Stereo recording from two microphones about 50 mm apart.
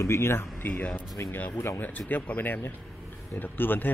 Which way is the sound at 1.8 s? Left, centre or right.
Left.